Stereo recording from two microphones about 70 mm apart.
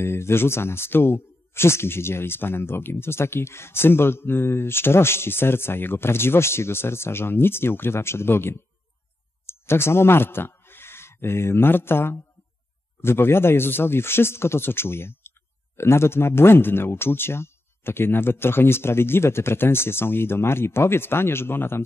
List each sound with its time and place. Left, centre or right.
0.0 s a man's voice: left